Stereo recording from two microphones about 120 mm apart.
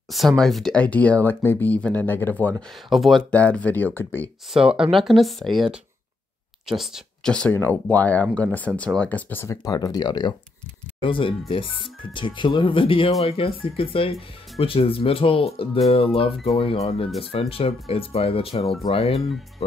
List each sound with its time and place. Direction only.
0.4 s speech: 5° left (ahead or behind)
2.9 s speech: centre (ahead or behind); by 4.3 s 20° left (ahead or behind)
4.6 s speech: 5° right (ahead or behind)
6.8 s speech: 5° left (ahead or behind)
9.7 s speech: 35° left (ahead or behind); by 19.3 s 55° left (ahead or behind)